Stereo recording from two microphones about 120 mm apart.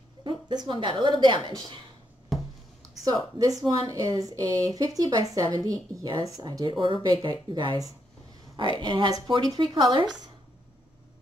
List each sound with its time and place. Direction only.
0.2 s a woman's voice: 40° right (ahead or behind)
2.3 s a sound: centre (ahead or behind)
3.1 s speech: 30° right (ahead or behind)